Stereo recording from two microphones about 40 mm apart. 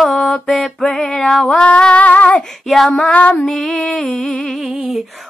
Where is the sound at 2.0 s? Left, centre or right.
Left.